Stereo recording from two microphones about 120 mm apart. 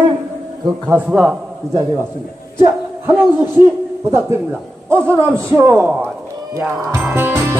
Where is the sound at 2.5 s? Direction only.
25° right (ahead or behind).